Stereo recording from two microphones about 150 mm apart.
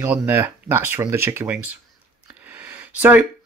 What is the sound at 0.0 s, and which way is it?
Speech, 15° right (ahead or behind).